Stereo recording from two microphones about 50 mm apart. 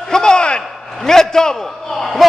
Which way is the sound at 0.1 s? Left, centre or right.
Centre.